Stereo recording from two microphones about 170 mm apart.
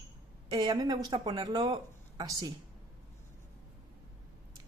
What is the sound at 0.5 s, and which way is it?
Speech, 25° right (ahead or behind).